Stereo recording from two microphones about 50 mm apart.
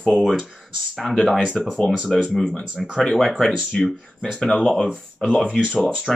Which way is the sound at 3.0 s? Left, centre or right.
Centre.